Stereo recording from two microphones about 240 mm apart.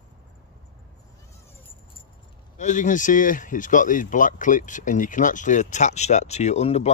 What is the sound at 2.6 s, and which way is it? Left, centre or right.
Speech, left.